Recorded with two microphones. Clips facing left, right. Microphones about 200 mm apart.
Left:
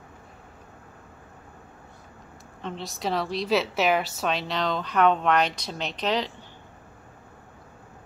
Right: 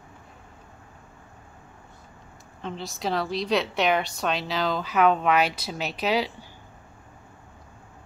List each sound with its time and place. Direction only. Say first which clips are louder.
2.6 s a woman's voice: even; centre (ahead or behind)